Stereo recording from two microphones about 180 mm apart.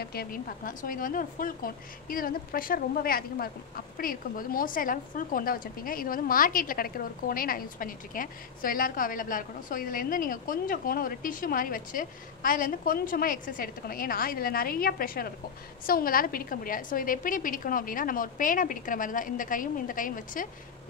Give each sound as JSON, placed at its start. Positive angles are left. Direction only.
{"t": 0.0, "sound": "speech", "side_deg": 60}